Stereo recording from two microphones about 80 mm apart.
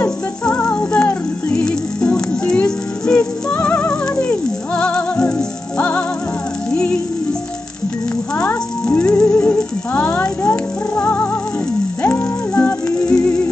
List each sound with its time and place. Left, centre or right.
0.0 s music: centre
3.5 s music: left
8.8 s music: centre
9.1 s music: left
9.6 s a sound: left
10.5 s music: left